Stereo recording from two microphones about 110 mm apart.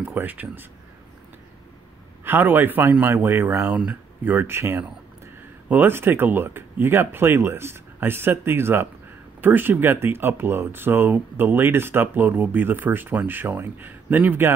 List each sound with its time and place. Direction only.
0.0 s speech: 15° right (ahead or behind)
2.2 s speech: 15° right (ahead or behind)